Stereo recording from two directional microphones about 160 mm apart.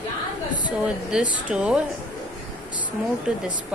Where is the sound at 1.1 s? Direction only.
5° right (ahead or behind).